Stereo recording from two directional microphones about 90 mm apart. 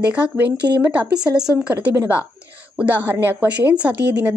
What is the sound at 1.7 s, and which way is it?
A woman's voice, 20° right (ahead or behind).